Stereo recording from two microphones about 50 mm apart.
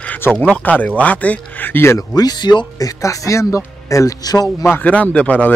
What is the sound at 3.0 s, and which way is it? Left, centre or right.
Speech, left.